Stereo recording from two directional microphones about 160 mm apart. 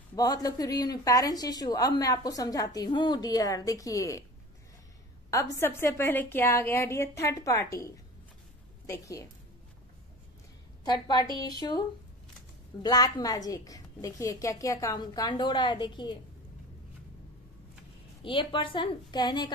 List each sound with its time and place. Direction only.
0.1 s a woman's voice: 25° left (ahead or behind)
5.3 s a woman's voice: 20° left (ahead or behind)
10.9 s a woman's voice: 25° left (ahead or behind)
12.8 s a woman's voice: 25° left (ahead or behind)
18.2 s a woman's voice: 30° left (ahead or behind)